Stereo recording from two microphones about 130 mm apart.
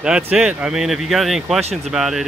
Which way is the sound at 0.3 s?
5° right (ahead or behind).